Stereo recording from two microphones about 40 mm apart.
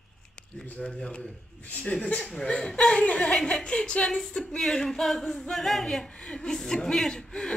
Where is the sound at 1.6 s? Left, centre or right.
Left.